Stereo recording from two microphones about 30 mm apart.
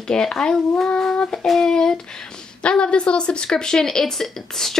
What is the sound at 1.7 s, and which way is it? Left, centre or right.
Speech, left.